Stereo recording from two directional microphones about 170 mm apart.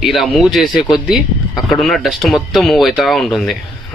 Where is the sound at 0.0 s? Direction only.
Centre (ahead or behind).